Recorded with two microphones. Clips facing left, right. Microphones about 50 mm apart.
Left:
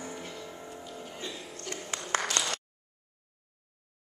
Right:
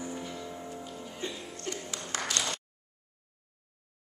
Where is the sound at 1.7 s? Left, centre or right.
Left.